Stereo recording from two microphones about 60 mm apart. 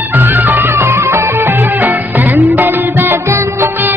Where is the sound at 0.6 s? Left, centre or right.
Right.